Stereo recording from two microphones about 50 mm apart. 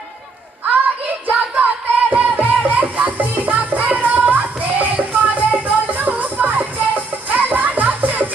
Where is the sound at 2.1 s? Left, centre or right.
Right.